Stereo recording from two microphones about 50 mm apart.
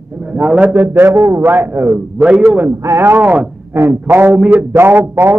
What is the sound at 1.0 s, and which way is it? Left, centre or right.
Speech, right.